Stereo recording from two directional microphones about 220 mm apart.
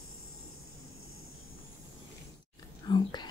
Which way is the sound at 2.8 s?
20° left (ahead or behind).